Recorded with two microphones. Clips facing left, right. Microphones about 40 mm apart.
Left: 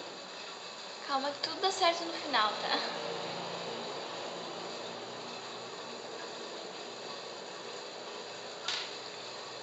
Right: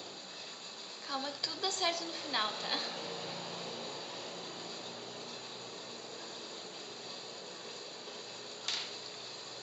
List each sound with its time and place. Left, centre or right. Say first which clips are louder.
1.0 s a woman's voice: left 5 dB; centre